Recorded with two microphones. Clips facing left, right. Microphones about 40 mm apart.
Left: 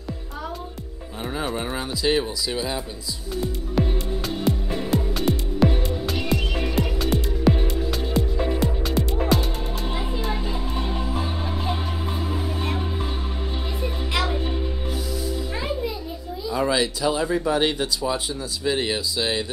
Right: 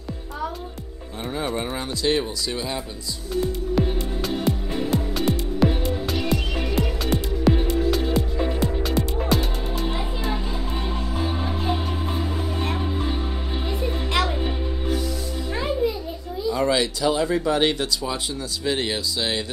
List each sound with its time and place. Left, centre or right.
1.3 s speech: centre
3.3 s music: centre
14.1 s music: centre
16.4 s speech: centre